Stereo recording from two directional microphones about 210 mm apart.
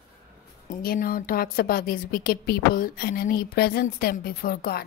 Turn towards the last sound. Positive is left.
turn(degrees=45)  # may be behind; listen again after turning